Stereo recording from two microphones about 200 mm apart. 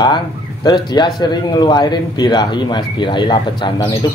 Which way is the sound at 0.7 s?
20° left (ahead or behind).